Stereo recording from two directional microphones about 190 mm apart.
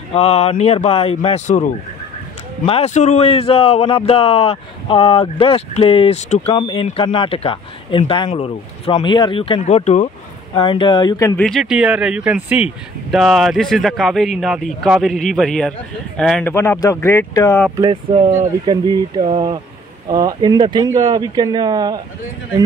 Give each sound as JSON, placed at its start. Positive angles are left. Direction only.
{"t": 0.1, "sound": "a man's voice", "side_deg": 35}
{"t": 2.6, "sound": "a man's voice", "side_deg": 30}
{"t": 10.5, "sound": "speech", "side_deg": 25}
{"t": 11.4, "sound": "speech", "side_deg": 0}
{"t": 17.7, "sound": "speech", "side_deg": -25}